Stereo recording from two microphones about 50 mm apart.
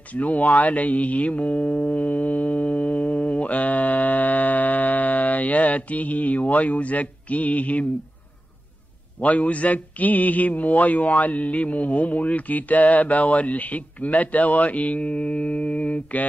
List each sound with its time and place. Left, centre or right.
0.1 s music: left
9.2 s speech: left